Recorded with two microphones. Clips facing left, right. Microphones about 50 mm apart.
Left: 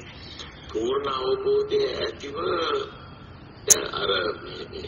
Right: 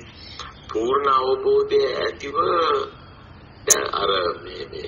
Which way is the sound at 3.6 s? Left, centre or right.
Right.